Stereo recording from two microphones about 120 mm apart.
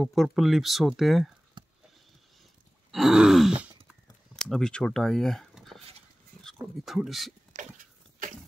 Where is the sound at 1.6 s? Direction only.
40° right (ahead or behind).